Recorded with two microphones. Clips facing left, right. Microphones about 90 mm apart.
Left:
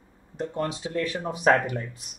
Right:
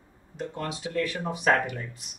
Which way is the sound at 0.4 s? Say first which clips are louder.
Left 4 dB; 35° left (ahead or behind).